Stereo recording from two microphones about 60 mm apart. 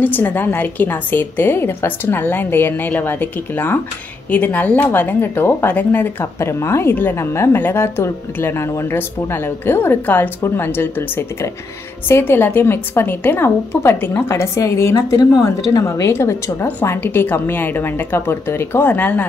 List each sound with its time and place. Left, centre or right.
0.0 s a woman's voice: left
6.4 s a woman's voice: left
8.9 s a woman's voice: left
16.8 s a woman's voice: left
18.9 s speech: left